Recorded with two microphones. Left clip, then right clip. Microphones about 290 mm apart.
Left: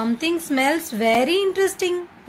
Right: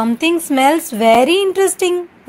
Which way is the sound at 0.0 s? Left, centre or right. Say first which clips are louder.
Right 7 dB; centre.